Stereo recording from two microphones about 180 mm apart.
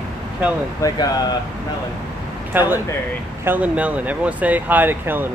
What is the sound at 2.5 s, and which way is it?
Speech, 10° right (ahead or behind).